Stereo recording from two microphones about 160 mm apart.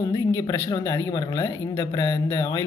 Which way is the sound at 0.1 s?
20° left (ahead or behind).